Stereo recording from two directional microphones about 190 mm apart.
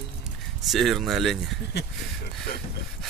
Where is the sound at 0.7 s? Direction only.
Centre (ahead or behind).